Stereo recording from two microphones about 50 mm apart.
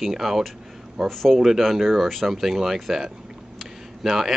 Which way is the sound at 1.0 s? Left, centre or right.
Centre.